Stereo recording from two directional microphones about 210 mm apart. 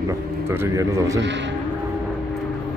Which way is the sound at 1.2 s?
60° right (ahead or behind).